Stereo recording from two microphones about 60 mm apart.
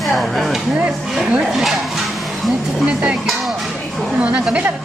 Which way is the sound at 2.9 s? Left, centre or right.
Centre.